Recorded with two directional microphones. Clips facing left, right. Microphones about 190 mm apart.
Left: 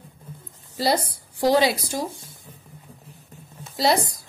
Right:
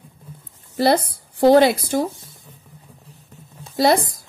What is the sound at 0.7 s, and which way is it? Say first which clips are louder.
A woman's voice: right 5 dB; 55° right (ahead or behind).